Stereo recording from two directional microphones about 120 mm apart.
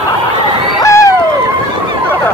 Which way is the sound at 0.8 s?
25° left (ahead or behind).